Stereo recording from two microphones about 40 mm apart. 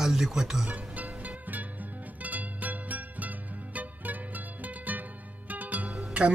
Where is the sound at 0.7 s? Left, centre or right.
Right.